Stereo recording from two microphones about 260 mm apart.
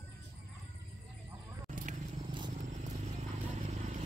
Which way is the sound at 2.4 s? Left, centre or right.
Right.